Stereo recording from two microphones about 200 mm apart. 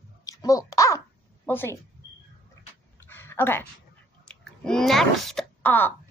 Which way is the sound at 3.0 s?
10° left (ahead or behind).